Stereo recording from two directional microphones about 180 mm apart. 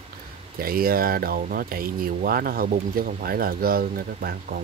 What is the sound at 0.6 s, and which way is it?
Speech, 55° right (ahead or behind).